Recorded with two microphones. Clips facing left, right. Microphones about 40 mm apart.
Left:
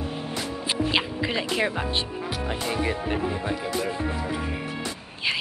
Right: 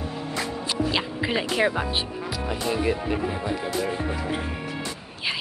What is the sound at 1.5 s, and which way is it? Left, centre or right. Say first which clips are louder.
Speech: right 2 dB; centre.